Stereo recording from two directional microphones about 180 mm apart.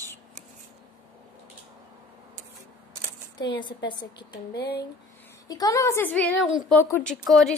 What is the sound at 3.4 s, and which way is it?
Speech, 25° left (ahead or behind).